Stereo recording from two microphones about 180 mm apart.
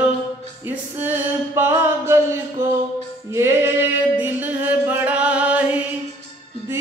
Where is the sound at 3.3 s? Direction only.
15° right (ahead or behind).